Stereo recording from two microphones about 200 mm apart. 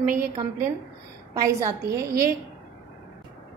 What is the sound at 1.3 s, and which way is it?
Speech, 15° right (ahead or behind).